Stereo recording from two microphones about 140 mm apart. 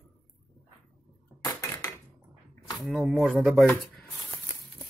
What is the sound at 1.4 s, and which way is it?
Dishes, 20° left (ahead or behind).